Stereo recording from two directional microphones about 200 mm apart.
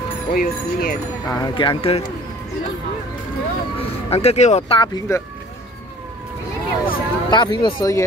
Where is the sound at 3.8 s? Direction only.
30° left (ahead or behind).